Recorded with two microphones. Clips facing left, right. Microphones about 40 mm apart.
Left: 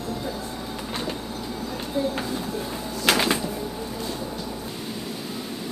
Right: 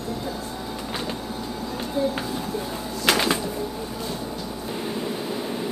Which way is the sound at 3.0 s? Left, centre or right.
Centre.